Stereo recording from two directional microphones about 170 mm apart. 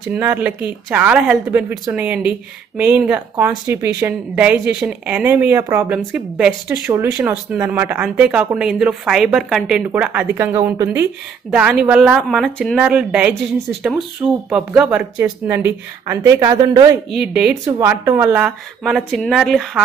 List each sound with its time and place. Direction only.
0.1 s a woman's voice: 10° right (ahead or behind)
17.1 s a woman's voice: 5° right (ahead or behind)